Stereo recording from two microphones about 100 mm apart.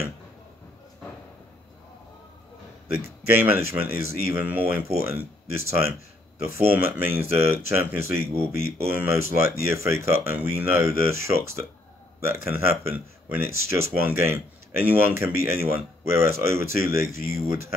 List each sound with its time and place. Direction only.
3.4 s speech: 20° right (ahead or behind)